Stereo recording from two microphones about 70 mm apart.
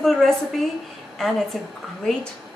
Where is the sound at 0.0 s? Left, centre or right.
Centre.